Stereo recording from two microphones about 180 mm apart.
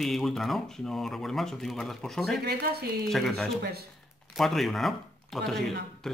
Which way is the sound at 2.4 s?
60° right (ahead or behind).